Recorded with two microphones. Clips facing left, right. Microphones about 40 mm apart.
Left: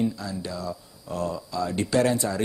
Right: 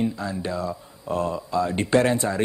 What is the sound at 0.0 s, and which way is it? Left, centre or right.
A woman's voice, right.